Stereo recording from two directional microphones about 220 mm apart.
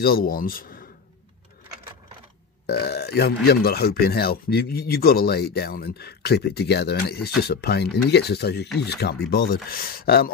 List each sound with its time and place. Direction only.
0.0 s speech: 40° left (ahead or behind)
2.6 s speech: 45° left (ahead or behind)